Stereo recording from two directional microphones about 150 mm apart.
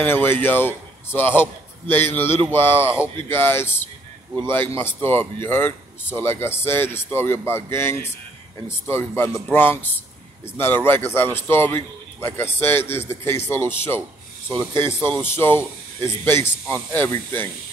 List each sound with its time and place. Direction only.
0.0 s speech: 15° left (ahead or behind)
15.0 s speech: 30° right (ahead or behind)
15.2 s speech: 15° left (ahead or behind)